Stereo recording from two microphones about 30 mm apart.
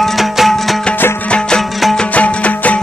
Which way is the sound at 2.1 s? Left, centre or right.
Left.